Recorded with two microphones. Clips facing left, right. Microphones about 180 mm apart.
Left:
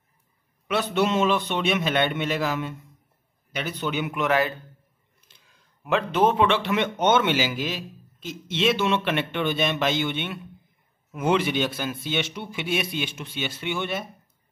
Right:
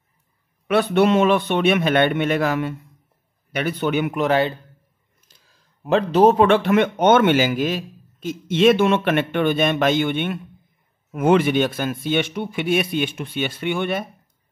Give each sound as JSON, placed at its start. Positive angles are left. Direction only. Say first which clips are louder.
{"t": 0.7, "sound": "a man's voice", "louder": "right 7 dB", "side_deg": -60}
{"t": 4.1, "sound": "speech", "louder": "right 4 dB", "side_deg": -35}